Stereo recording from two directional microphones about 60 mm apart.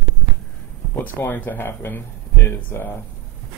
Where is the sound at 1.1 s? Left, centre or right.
Left.